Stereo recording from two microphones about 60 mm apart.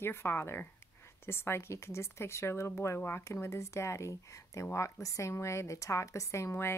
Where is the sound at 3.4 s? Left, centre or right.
Left.